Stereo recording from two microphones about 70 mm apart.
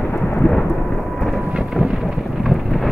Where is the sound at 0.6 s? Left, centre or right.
Left.